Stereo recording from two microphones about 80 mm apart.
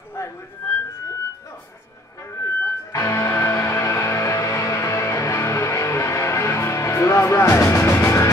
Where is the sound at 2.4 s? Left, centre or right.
Left.